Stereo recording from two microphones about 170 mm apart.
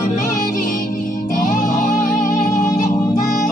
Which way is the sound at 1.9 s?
20° left (ahead or behind).